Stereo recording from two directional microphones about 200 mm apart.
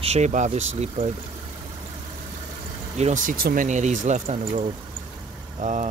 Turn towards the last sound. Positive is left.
turn(degrees=-40)  # may be behind; listen again after turning